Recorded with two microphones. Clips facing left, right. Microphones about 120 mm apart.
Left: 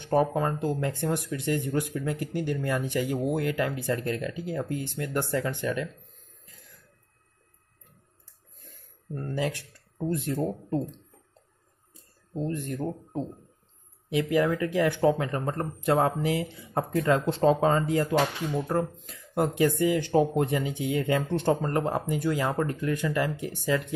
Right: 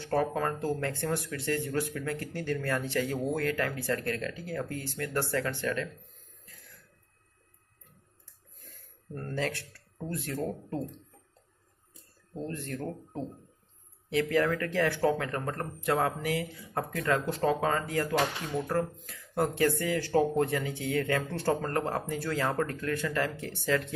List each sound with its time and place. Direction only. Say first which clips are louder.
0.0 s speech: left 4 dB; 20° left (ahead or behind)
9.1 s speech: left 3 dB; 15° left (ahead or behind)
12.4 s speech: left 5 dB; 15° left (ahead or behind)